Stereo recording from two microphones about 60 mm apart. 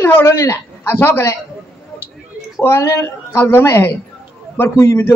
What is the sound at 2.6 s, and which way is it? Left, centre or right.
Speech, left.